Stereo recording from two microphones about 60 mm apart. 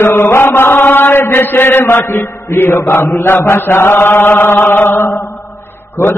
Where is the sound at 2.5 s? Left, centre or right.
Left.